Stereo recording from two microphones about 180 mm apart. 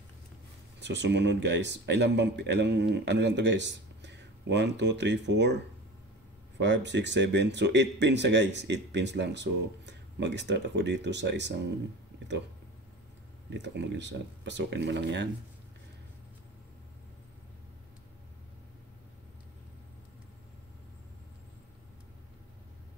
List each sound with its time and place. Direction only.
0.7 s speech: 75° right (ahead or behind)
6.6 s speech: 75° right (ahead or behind)
13.5 s speech: 75° right (ahead or behind)